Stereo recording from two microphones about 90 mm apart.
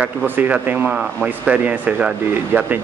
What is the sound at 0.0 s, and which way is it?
A man's voice, 15° right (ahead or behind).